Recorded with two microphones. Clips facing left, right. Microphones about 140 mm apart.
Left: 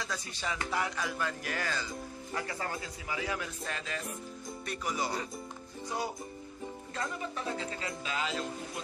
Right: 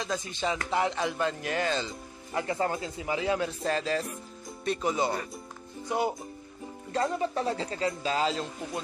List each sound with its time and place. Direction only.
0.0 s a man's voice: 20° right (ahead or behind)
6.9 s speech: 35° right (ahead or behind)